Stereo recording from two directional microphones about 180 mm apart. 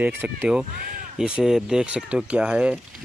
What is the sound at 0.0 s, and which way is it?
Speech, 10° right (ahead or behind).